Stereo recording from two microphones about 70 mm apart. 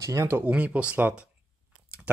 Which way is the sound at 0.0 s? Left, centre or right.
Right.